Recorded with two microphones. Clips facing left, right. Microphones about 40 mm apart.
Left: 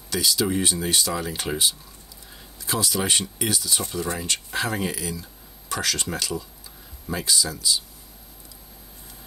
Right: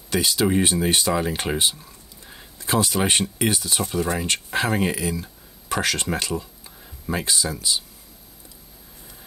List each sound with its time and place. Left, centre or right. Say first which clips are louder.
0.1 s speech: right 3 dB; right